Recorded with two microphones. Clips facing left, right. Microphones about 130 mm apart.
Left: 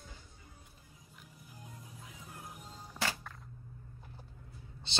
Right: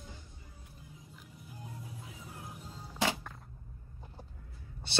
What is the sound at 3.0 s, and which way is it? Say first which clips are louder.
Music: right 5 dB; 15° right (ahead or behind).